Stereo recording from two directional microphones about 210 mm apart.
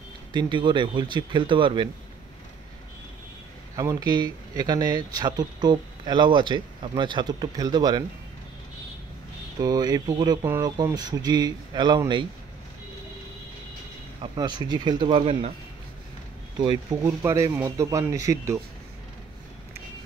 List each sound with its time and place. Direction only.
0.3 s speech: 20° right (ahead or behind)
3.7 s speech: 15° right (ahead or behind)
9.6 s speech: 20° right (ahead or behind)
14.2 s speech: 20° right (ahead or behind)
16.9 s speech: 15° right (ahead or behind)